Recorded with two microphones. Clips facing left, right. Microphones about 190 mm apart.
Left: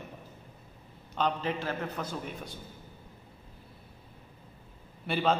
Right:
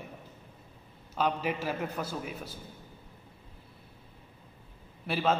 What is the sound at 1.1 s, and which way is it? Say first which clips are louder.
A man's voice: even; 10° right (ahead or behind).